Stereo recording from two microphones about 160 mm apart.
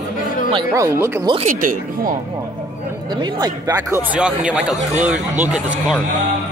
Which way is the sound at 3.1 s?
25° right (ahead or behind).